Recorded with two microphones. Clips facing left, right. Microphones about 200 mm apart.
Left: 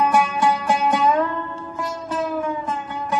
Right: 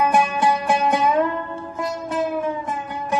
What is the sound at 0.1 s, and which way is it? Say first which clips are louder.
Music: even; 20° right (ahead or behind).